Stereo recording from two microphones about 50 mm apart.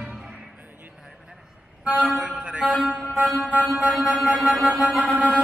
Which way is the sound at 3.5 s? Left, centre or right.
Centre.